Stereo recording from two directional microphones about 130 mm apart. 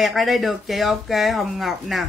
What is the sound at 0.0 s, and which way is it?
Speech, centre (ahead or behind).